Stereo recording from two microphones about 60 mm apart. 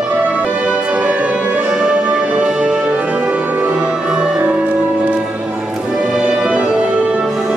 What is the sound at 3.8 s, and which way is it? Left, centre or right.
Music, centre.